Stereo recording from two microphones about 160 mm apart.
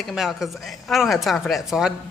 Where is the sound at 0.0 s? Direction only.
Centre (ahead or behind).